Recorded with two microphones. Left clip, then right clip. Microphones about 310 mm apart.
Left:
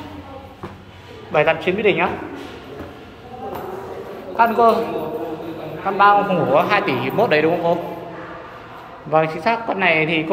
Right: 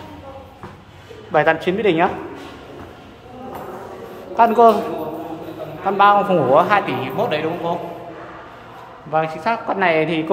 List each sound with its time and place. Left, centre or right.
1.3 s a man's voice: centre
4.4 s a man's voice: right
5.9 s a man's voice: right
6.9 s speech: centre
9.1 s a woman's voice: centre